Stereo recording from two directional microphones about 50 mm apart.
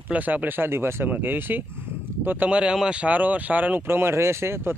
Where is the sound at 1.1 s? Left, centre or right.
Right.